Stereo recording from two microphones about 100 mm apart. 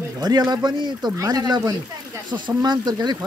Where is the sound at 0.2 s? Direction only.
40° right (ahead or behind).